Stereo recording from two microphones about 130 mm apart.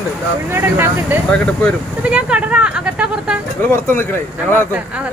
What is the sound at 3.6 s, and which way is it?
Speech, 15° left (ahead or behind).